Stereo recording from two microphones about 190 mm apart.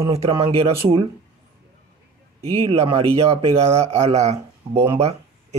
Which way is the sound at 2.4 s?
30° right (ahead or behind).